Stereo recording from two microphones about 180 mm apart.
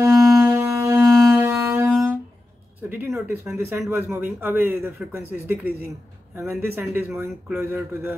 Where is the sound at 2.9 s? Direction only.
10° right (ahead or behind).